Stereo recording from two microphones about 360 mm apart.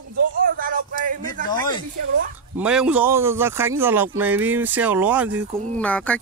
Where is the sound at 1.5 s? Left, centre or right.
Centre.